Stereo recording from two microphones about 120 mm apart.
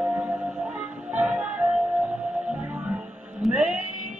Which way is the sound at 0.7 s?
10° right (ahead or behind).